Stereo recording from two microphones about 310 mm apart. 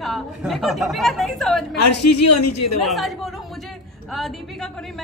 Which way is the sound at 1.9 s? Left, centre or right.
Left.